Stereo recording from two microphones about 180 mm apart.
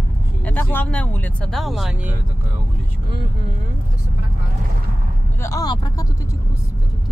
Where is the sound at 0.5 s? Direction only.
10° left (ahead or behind).